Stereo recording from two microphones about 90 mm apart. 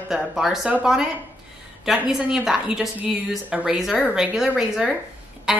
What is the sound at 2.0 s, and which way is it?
Speech, 5° right (ahead or behind).